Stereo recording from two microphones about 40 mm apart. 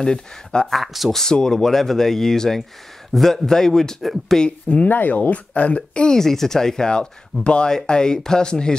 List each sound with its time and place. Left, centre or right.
0.0 s speech: centre
0.7 s speech: centre
1.1 s speech: centre
4.0 s speech: centre
4.8 s speech: left
6.0 s speech: centre